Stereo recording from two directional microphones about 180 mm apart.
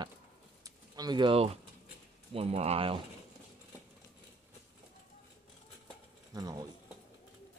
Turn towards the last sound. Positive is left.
turn(degrees=-20)  # may be behind; listen again after turning